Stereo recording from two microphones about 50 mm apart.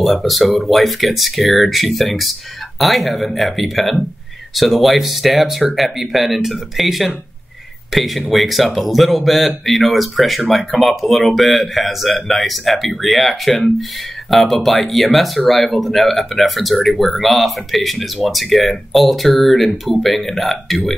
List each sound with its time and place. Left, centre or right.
0.0 s speech: centre